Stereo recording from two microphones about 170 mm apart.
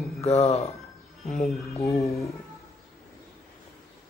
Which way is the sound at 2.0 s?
20° left (ahead or behind).